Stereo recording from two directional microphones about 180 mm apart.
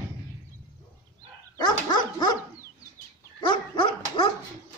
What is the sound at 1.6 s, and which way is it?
Dog, 25° left (ahead or behind).